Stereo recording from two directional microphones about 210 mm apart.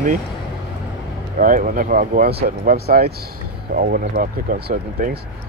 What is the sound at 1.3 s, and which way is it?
Speech, 40° right (ahead or behind).